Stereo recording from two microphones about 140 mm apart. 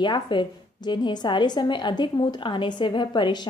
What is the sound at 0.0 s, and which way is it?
A woman's voice, 35° left (ahead or behind).